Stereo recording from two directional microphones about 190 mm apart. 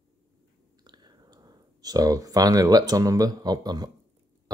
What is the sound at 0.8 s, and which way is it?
Speech, 20° right (ahead or behind).